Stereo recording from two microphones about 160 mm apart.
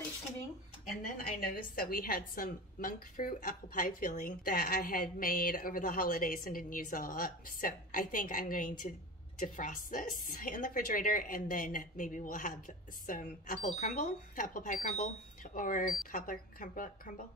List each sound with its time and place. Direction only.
1.0 s a woman's voice: 55° left (ahead or behind)